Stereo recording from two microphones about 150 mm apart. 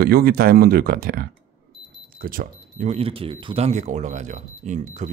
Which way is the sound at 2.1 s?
70° right (ahead or behind).